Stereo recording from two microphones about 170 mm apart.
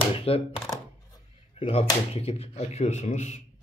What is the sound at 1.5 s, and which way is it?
Speech, 35° left (ahead or behind).